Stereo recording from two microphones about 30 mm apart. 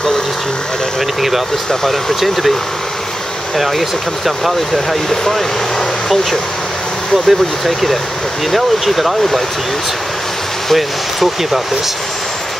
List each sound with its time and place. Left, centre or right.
3.5 s speech: centre
7.2 s speech: centre
10.7 s speech: centre